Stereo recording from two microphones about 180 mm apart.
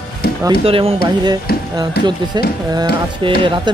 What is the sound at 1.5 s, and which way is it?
Speech, 55° left (ahead or behind).